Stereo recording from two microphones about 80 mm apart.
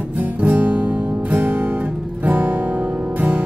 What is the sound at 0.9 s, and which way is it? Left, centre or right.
Music, centre.